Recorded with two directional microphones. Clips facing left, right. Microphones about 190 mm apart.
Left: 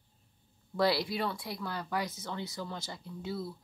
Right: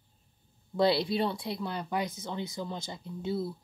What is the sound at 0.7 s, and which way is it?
Speech, 25° right (ahead or behind).